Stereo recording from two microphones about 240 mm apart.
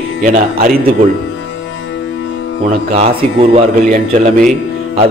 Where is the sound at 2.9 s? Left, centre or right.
Right.